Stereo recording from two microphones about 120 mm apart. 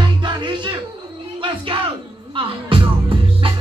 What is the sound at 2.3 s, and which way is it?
Music, 45° right (ahead or behind).